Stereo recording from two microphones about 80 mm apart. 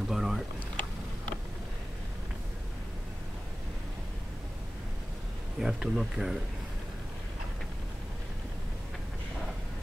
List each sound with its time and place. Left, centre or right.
0.1 s boat: centre
5.6 s speech: centre